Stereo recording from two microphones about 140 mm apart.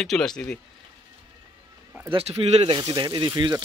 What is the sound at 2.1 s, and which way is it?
Speech, 45° right (ahead or behind).